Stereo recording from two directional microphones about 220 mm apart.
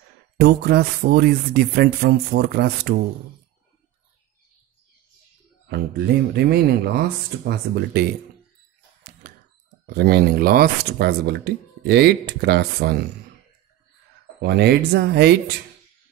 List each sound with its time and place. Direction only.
0.4 s speech: 45° right (ahead or behind)
6.3 s speech: 45° right (ahead or behind)
9.9 s speech: 45° right (ahead or behind)
14.4 s speech: 50° right (ahead or behind)